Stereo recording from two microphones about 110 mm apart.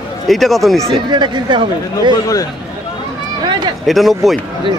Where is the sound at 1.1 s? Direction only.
45° right (ahead or behind).